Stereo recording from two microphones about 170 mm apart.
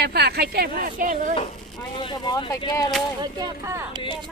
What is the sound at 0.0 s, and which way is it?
Speech, 70° right (ahead or behind).